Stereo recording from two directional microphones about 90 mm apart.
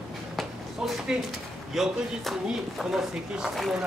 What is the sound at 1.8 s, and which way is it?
Speech, 5° right (ahead or behind).